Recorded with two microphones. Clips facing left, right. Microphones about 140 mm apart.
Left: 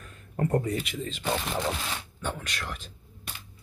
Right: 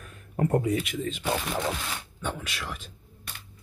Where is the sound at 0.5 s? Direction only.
5° right (ahead or behind).